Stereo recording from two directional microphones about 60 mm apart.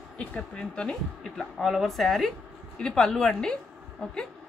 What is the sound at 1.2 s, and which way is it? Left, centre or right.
A woman's voice, centre.